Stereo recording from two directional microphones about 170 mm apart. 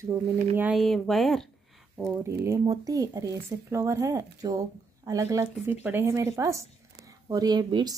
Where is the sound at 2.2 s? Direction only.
15° right (ahead or behind).